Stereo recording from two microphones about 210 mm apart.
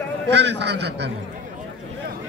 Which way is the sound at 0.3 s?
55° right (ahead or behind).